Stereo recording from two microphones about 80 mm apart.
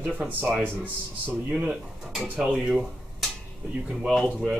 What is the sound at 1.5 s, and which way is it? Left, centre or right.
Speech, centre.